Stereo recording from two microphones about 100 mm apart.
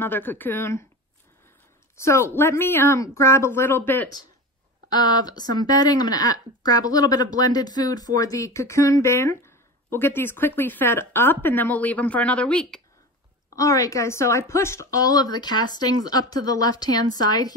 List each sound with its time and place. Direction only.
0.0 s speech: 20° left (ahead or behind)
2.0 s speech: 30° left (ahead or behind)
4.8 s speech: 45° left (ahead or behind); by 12.8 s 10° left (ahead or behind)
13.6 s speech: 35° left (ahead or behind)